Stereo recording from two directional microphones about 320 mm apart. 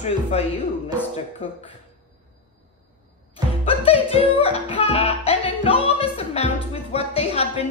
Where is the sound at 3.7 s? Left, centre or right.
Centre.